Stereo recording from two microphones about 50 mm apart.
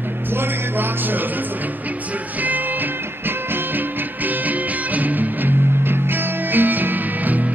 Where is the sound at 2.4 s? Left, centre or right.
Right.